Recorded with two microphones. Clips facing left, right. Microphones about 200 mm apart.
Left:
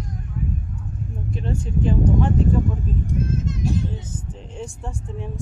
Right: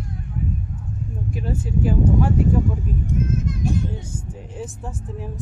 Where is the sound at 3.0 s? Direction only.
30° left (ahead or behind).